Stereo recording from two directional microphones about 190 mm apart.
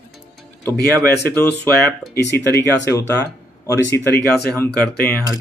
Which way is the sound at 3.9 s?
10° left (ahead or behind).